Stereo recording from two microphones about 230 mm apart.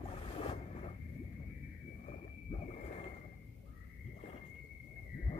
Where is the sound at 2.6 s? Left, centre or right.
Left.